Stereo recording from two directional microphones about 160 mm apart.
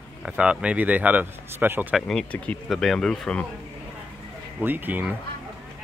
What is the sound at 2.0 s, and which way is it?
Speech, 5° left (ahead or behind).